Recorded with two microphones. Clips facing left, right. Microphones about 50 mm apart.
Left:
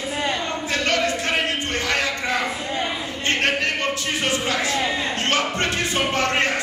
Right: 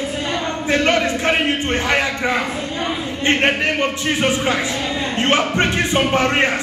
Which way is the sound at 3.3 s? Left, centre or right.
Right.